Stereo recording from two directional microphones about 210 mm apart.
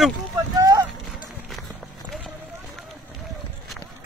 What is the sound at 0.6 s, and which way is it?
Run, 15° right (ahead or behind).